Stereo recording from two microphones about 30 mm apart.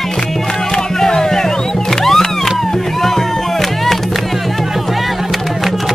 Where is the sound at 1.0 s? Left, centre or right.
Centre.